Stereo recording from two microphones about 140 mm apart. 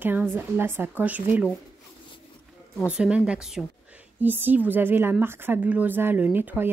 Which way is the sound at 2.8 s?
10° right (ahead or behind).